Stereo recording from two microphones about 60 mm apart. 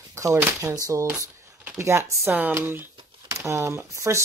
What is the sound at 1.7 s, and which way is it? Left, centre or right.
Speech, right.